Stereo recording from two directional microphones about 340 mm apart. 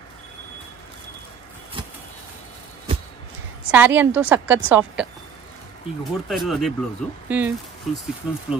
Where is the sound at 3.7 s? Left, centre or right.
Centre.